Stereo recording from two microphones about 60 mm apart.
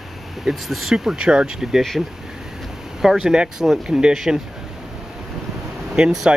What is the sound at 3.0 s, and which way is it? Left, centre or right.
Speech, centre.